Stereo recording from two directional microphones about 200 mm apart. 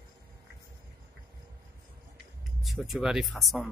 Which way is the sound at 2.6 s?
Centre (ahead or behind).